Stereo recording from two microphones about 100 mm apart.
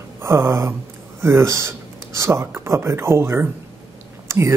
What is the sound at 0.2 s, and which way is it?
Speech, 25° right (ahead or behind).